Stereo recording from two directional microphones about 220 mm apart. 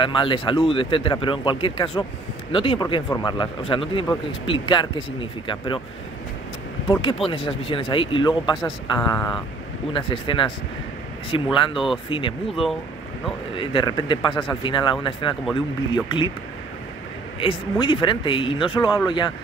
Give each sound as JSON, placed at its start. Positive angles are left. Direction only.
{"t": 0.0, "sound": "a man's voice", "side_deg": 20}
{"t": 6.9, "sound": "a man's voice", "side_deg": 25}
{"t": 11.7, "sound": "speech", "side_deg": 0}
{"t": 12.1, "sound": "a man's voice", "side_deg": 25}
{"t": 13.6, "sound": "a man's voice", "side_deg": 20}
{"t": 17.4, "sound": "a man's voice", "side_deg": 25}